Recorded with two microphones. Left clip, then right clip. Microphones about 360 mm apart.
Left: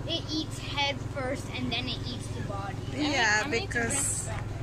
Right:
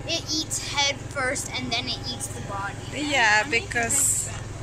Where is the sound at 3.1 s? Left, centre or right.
Centre.